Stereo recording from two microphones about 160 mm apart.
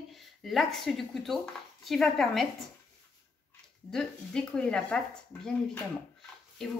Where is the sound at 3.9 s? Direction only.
5° left (ahead or behind).